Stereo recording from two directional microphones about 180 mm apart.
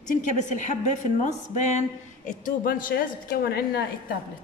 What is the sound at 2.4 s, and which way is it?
Speech, 50° left (ahead or behind).